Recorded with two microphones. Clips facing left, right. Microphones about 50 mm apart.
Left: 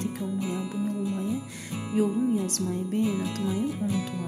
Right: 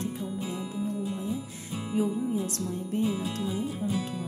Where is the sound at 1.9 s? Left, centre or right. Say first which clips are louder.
Left 3 dB; left.